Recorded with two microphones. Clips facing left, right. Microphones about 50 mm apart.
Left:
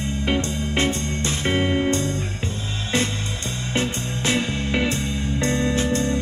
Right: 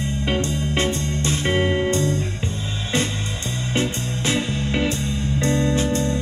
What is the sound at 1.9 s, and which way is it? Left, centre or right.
Music, right.